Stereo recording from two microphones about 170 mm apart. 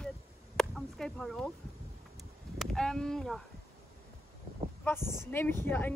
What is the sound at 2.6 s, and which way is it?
Speech, centre (ahead or behind).